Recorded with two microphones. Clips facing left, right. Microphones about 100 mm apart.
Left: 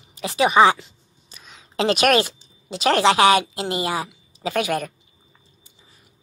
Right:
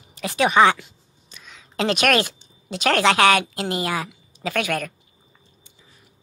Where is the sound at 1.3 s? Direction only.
35° left (ahead or behind).